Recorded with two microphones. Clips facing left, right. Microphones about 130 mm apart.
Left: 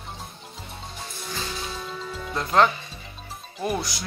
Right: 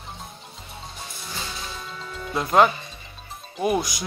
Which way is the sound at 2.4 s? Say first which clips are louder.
Right 2 dB; 10° right (ahead or behind).